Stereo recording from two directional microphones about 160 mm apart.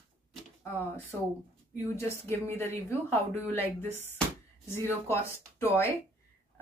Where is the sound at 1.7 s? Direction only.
15° left (ahead or behind).